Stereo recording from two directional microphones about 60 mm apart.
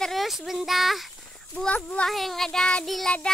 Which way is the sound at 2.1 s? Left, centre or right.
Centre.